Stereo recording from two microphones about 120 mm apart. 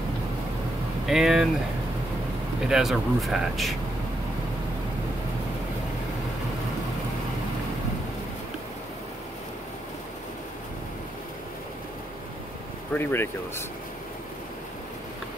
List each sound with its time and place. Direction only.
1.0 s speech: 5° right (ahead or behind)
2.7 s speech: centre (ahead or behind)
12.9 s speech: 20° left (ahead or behind)